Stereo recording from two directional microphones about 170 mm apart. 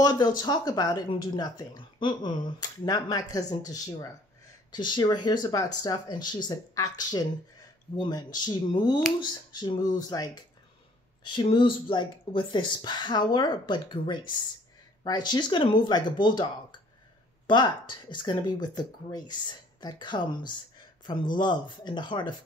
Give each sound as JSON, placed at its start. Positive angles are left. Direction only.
{"t": 0.0, "sound": "speech", "side_deg": 25}
{"t": 17.5, "sound": "speech", "side_deg": 25}